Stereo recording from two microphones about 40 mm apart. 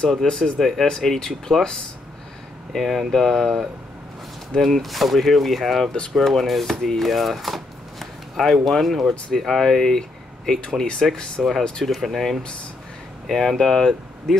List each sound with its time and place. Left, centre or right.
0.1 s speech: centre
2.7 s speech: centre
11.8 s speech: centre
13.3 s speech: centre